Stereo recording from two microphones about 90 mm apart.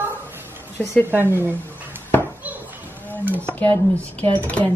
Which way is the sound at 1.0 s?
25° right (ahead or behind).